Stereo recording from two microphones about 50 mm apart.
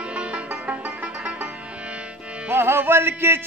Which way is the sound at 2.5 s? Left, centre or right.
Right.